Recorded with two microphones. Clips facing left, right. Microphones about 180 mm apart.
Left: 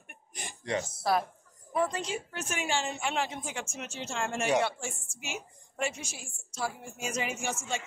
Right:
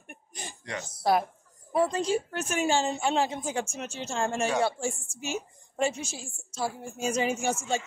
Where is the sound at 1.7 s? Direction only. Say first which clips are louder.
Right 5 dB; 30° right (ahead or behind).